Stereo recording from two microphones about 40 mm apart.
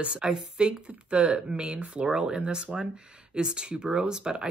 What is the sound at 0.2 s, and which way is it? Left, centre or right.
Speech, centre.